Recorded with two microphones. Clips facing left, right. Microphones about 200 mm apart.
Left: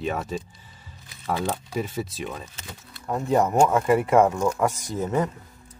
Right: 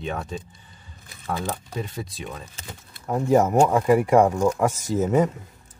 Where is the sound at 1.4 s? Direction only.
5° left (ahead or behind).